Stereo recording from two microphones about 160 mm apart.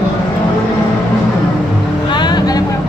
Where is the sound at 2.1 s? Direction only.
25° left (ahead or behind).